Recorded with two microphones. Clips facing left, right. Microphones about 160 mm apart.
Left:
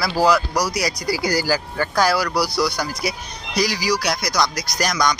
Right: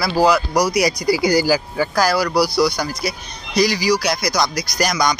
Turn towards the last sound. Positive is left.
turn(degrees=-5)  # may be behind; listen again after turning